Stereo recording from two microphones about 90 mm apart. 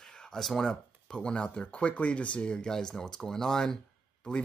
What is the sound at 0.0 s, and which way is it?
Speech, 10° left (ahead or behind).